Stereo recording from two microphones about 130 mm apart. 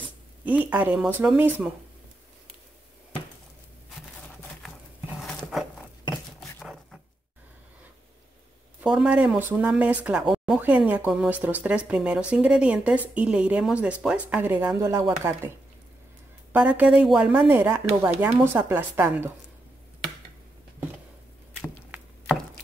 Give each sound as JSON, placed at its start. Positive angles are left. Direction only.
{"t": 0.5, "sound": "a woman's voice", "side_deg": -10}
{"t": 5.2, "sound": "a sound", "side_deg": 0}
{"t": 8.8, "sound": "a woman's voice", "side_deg": -5}
{"t": 16.5, "sound": "a woman's voice", "side_deg": -10}